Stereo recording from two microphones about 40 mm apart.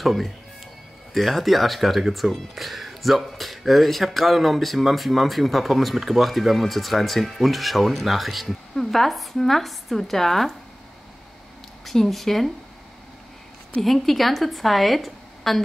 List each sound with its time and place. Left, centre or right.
0.0 s speech: centre
11.8 s speech: centre
13.8 s speech: centre